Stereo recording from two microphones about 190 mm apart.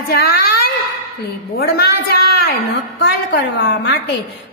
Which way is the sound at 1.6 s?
55° left (ahead or behind).